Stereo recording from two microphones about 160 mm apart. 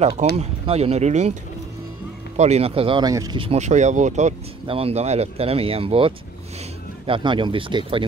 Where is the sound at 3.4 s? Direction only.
40° right (ahead or behind).